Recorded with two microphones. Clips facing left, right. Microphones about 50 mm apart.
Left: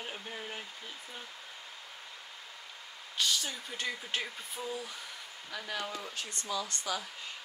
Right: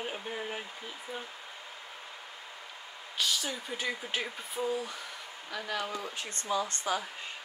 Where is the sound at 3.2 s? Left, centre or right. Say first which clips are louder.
Right 1 dB; centre.